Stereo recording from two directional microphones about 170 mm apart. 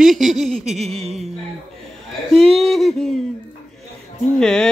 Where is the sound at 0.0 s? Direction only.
Centre (ahead or behind).